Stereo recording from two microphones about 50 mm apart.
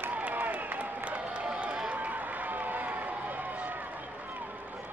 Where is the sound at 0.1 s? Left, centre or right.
Right.